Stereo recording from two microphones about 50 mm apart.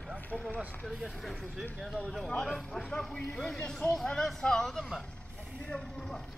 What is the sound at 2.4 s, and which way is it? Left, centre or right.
Speech, centre.